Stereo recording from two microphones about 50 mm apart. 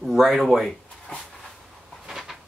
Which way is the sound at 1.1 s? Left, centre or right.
Left.